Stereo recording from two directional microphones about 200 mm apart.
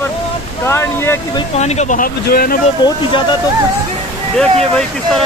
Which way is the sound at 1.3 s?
35° left (ahead or behind).